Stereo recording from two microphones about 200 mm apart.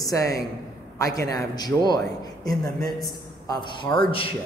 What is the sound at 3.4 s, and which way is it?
Speech, 20° left (ahead or behind).